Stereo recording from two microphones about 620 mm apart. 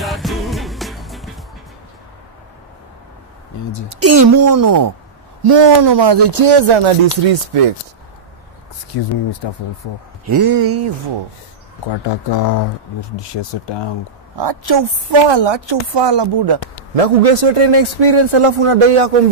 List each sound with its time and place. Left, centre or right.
0.0 s music: centre
3.9 s a woman's voice: right
8.9 s speech: left
10.3 s a woman's voice: right
11.9 s speech: left
14.3 s a woman's voice: right
16.9 s a man's voice: right